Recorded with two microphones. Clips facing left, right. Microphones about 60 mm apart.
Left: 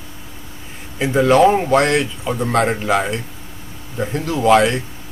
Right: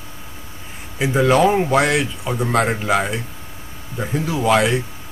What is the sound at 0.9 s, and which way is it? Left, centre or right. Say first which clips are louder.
Speech: left 2 dB; centre.